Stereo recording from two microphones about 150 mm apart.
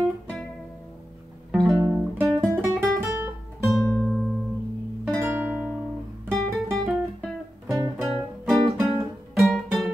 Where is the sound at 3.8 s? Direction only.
20° left (ahead or behind).